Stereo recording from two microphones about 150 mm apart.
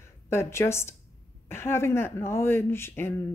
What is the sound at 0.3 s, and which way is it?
A woman's voice, 15° left (ahead or behind).